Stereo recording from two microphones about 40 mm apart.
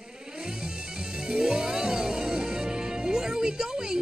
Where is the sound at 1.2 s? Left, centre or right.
Centre.